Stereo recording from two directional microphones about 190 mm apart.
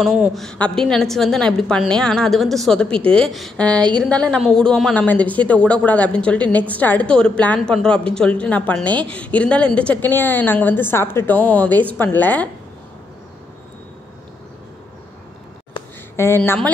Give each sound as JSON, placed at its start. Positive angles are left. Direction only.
{"t": 0.0, "sound": "a woman's voice", "side_deg": 0}
{"t": 3.7, "sound": "a woman's voice", "side_deg": -20}
{"t": 4.0, "sound": "a woman's voice", "side_deg": 5}
{"t": 16.2, "sound": "a woman's voice", "side_deg": 10}